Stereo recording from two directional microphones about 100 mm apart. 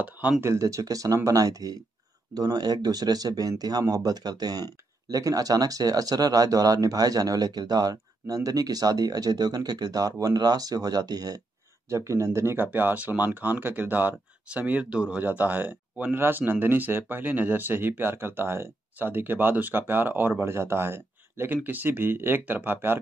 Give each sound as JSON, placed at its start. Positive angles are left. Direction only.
{"t": 0.0, "sound": "speech", "side_deg": -15}
{"t": 11.9, "sound": "speech", "side_deg": -30}